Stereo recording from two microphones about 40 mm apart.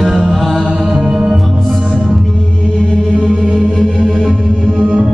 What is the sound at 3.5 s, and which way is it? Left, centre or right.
Music, centre.